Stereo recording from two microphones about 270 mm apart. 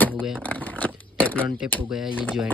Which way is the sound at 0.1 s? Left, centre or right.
Centre.